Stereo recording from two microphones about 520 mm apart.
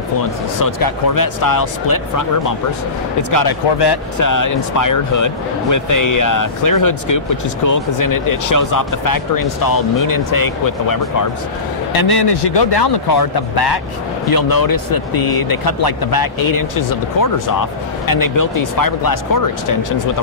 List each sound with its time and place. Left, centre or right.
0.6 s speech: left